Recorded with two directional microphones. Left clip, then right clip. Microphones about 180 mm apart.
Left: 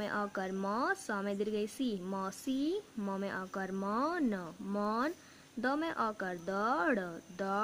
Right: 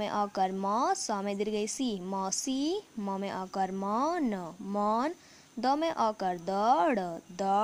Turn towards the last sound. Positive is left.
turn(degrees=-20)  # may be behind; listen again after turning